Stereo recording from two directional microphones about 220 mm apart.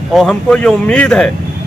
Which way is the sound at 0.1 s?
Centre (ahead or behind).